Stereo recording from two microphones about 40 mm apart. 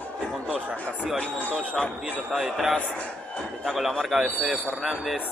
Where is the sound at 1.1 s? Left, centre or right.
Left.